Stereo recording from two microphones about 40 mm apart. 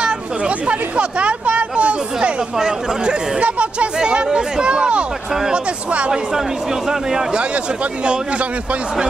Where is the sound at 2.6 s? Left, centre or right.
Centre.